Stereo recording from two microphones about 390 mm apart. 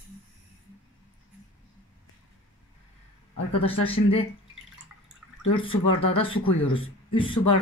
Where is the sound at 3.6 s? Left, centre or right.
Centre.